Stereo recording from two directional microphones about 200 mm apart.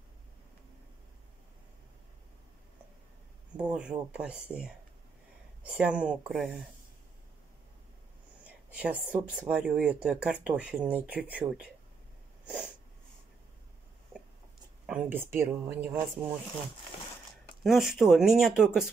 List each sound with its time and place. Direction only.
3.5 s speech: 5° right (ahead or behind)
8.5 s speech: 5° right (ahead or behind)
12.4 s snort: 5° right (ahead or behind)
14.9 s speech: 10° right (ahead or behind)
17.6 s speech: centre (ahead or behind)